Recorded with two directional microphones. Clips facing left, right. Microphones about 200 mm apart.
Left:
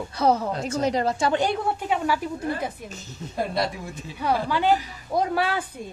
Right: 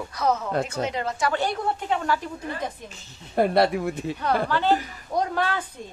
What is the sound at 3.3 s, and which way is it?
Speech, 65° right (ahead or behind).